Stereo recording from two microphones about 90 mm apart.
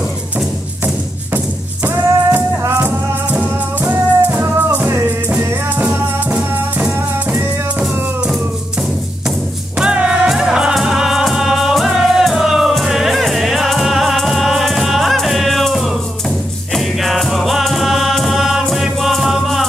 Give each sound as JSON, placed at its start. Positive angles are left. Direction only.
{"t": 1.9, "sound": "music", "side_deg": -25}
{"t": 9.8, "sound": "music", "side_deg": -10}